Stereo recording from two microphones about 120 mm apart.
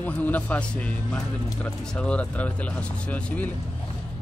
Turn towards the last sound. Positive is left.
turn(degrees=10)  # may be behind; listen again after turning